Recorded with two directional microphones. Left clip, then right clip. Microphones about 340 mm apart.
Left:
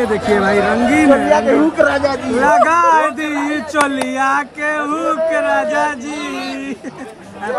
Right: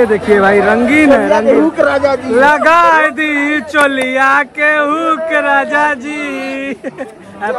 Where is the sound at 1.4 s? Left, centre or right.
Left.